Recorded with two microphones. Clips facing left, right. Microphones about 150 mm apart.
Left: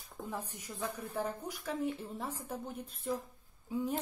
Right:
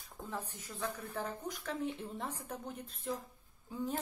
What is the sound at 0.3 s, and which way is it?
A woman's voice, 15° left (ahead or behind).